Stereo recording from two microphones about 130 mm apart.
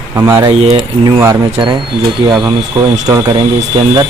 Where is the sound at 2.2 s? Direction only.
35° right (ahead or behind).